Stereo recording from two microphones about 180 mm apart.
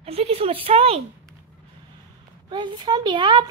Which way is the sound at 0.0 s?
35° right (ahead or behind).